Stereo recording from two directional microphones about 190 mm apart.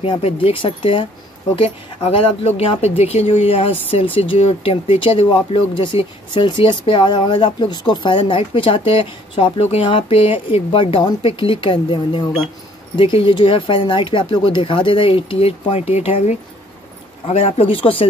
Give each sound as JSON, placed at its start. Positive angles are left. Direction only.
{"t": 0.0, "sound": "speech", "side_deg": 30}